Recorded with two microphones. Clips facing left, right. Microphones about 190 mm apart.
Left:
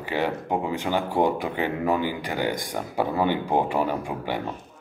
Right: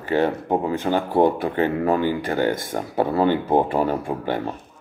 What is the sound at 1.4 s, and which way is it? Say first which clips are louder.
Speech: right 5 dB; 15° left (ahead or behind).